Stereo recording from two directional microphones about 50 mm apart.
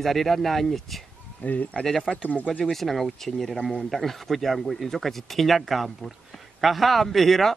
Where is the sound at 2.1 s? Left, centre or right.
Left.